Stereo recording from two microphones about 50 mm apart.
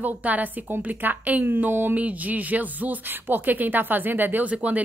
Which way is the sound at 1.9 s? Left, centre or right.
Right.